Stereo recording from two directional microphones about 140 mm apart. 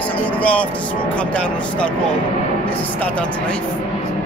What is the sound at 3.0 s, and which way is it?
Speech, 10° left (ahead or behind).